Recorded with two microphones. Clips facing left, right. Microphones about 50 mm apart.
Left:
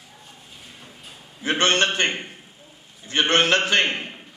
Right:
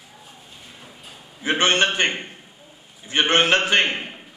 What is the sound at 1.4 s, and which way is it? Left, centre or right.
Speech, centre.